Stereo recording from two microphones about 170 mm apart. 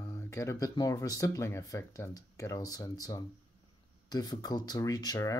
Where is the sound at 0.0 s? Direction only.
15° left (ahead or behind).